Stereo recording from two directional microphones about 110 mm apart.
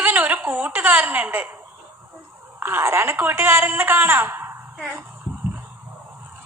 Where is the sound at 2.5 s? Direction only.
20° right (ahead or behind).